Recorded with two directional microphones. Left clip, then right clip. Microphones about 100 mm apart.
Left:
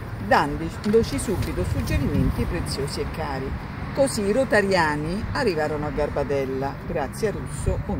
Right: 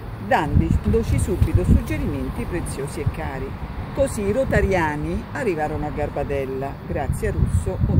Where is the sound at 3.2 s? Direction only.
20° right (ahead or behind).